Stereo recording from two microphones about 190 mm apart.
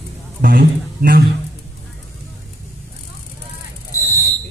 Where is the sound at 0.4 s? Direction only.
50° right (ahead or behind).